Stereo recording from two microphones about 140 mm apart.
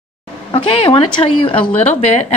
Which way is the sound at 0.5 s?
40° left (ahead or behind).